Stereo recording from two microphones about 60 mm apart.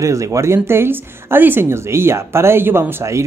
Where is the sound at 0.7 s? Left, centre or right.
Right.